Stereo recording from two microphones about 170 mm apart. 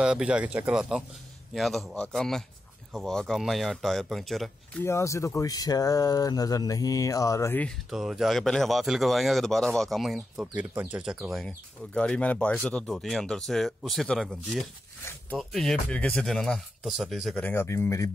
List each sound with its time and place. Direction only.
0.0 s speech: 5° right (ahead or behind)
4.8 s speech: 15° left (ahead or behind)
7.9 s speech: centre (ahead or behind)
17.5 s speech: 15° left (ahead or behind)